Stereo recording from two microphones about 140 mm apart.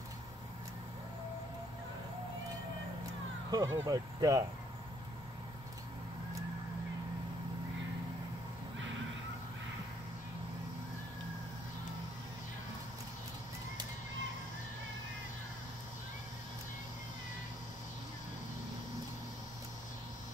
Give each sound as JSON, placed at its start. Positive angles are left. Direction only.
{"t": 3.5, "sound": "speech", "side_deg": -25}